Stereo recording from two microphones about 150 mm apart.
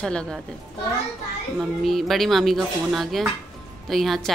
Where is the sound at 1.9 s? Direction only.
Centre (ahead or behind).